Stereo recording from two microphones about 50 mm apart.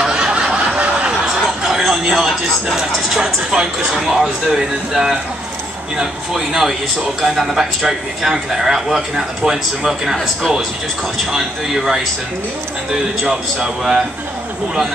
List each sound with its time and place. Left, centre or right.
0.0 s snicker: centre
0.7 s a sound: right
1.6 s a man's voice: centre
11.3 s a man's voice: centre
13.6 s a man's voice: centre